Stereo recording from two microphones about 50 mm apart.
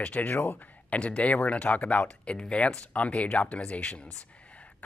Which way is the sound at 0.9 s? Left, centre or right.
Left.